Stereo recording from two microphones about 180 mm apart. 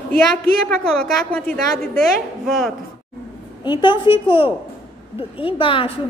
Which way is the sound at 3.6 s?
25° left (ahead or behind).